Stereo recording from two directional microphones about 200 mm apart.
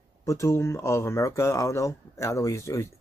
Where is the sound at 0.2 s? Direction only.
15° left (ahead or behind).